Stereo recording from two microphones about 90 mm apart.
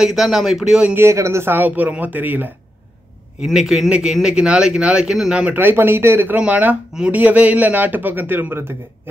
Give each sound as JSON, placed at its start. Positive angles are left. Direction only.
{"t": 0.0, "sound": "speech", "side_deg": -5}
{"t": 0.9, "sound": "speech", "side_deg": -30}
{"t": 3.4, "sound": "speech", "side_deg": -5}